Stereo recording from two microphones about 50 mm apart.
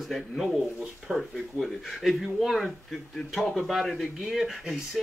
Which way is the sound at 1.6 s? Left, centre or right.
Centre.